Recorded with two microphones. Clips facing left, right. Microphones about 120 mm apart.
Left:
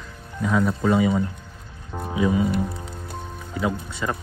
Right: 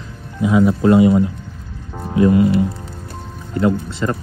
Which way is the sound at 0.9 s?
65° right (ahead or behind).